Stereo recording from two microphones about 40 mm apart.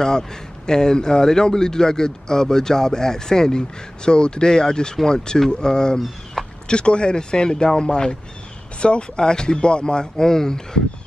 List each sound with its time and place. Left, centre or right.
0.2 s speech: centre
5.9 s speech: centre
6.7 s speech: left